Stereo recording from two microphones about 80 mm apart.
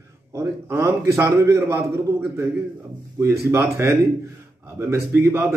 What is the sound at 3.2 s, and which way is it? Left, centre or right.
A man's voice, right.